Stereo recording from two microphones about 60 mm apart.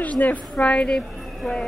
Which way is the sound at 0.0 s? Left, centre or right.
Left.